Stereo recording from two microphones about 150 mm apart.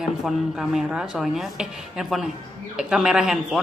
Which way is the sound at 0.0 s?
Centre (ahead or behind).